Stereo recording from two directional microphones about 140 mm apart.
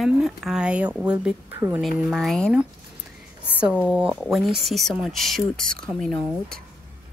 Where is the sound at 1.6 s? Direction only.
20° right (ahead or behind).